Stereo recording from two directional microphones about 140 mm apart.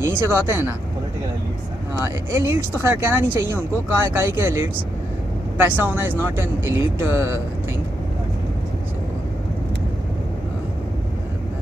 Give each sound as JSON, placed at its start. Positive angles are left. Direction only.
{"t": 0.0, "sound": "speech", "side_deg": -15}
{"t": 2.3, "sound": "speech", "side_deg": -15}
{"t": 5.7, "sound": "speech", "side_deg": -15}